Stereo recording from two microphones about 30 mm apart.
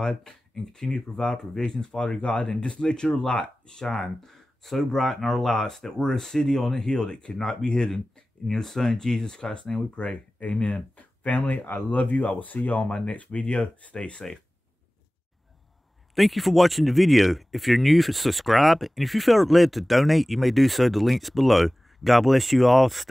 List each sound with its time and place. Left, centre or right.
0.0 s speech: left
3.8 s speech: centre
5.8 s speech: left
8.5 s speech: centre; by 9.7 s left
9.9 s speech: left
10.7 s speech: left
12.8 s speech: left
13.1 s speech: left
13.4 s speech: left
14.2 s speech: centre
16.2 s speech: centre